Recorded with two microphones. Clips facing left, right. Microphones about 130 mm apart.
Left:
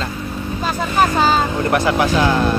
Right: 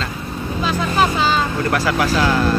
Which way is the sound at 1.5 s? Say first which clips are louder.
Left 2 dB; 20° left (ahead or behind).